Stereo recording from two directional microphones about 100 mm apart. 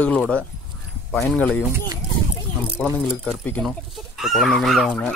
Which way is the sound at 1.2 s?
10° left (ahead or behind).